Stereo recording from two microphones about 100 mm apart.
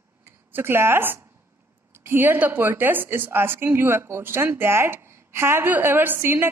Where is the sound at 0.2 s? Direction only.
20° right (ahead or behind).